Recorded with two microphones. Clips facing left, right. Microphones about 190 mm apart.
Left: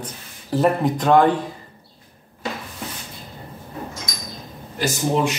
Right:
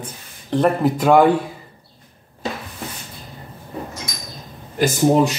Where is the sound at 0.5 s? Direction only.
Centre (ahead or behind).